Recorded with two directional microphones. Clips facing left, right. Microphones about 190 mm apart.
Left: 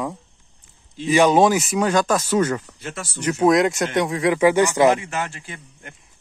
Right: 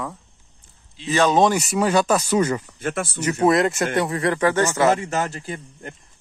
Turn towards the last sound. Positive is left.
turn(degrees=-40)  # may be behind; listen again after turning